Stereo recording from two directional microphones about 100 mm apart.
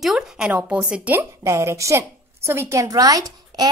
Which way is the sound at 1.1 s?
30° right (ahead or behind).